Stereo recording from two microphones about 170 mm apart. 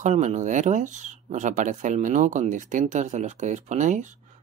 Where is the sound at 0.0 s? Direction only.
45° right (ahead or behind).